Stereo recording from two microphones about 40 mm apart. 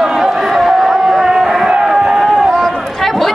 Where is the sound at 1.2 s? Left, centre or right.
Centre.